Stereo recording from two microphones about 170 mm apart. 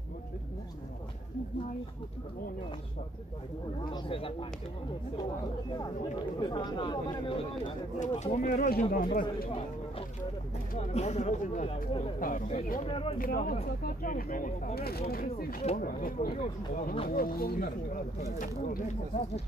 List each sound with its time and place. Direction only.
3.8 s speech: 30° left (ahead or behind)
6.4 s speech: 25° left (ahead or behind)
8.0 s speech: 40° left (ahead or behind)
9.5 s speech: 35° left (ahead or behind); by 12.8 s 50° left (ahead or behind)
12.8 s speech: 35° left (ahead or behind)
13.2 s speech: 55° left (ahead or behind)
16.3 s speech: 40° left (ahead or behind)
17.1 s speech: 55° left (ahead or behind)